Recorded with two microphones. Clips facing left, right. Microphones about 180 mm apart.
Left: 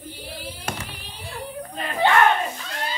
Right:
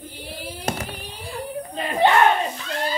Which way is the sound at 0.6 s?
40° right (ahead or behind).